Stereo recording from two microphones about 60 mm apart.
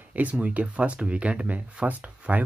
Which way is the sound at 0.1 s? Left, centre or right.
Right.